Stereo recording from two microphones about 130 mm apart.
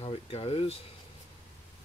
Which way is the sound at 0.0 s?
50° left (ahead or behind).